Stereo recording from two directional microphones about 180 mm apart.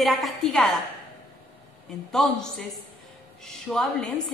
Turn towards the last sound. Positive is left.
turn(degrees=5)  # may be behind; listen again after turning